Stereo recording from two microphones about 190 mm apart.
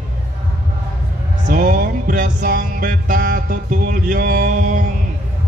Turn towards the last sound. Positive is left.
turn(degrees=-40)  # may be behind; listen again after turning